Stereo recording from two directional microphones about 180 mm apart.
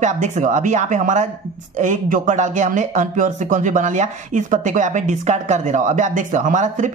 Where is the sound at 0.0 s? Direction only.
40° right (ahead or behind).